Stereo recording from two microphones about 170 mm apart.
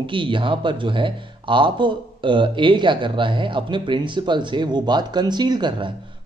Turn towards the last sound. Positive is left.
turn(degrees=-25)  # may be behind; listen again after turning